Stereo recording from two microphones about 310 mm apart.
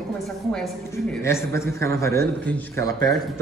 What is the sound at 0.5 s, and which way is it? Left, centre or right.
A man's voice, centre.